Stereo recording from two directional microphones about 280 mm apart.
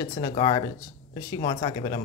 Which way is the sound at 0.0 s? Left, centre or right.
Centre.